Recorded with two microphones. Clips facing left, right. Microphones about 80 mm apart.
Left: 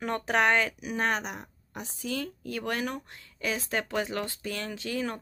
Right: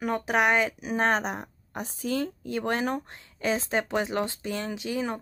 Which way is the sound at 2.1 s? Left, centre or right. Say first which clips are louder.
Right 6 dB; right.